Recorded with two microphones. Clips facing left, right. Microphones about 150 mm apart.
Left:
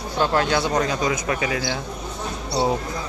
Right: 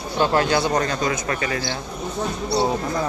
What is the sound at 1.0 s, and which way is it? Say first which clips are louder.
Speech: left 1 dB; 10° left (ahead or behind).